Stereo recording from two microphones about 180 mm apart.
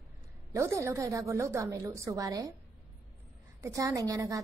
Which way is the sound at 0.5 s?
15° right (ahead or behind).